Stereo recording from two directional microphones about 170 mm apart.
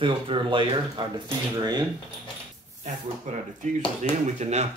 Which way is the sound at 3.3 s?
45° right (ahead or behind).